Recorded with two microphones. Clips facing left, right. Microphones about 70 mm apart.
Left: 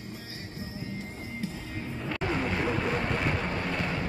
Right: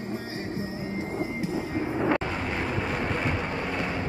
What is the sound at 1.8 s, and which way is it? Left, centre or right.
Music, right.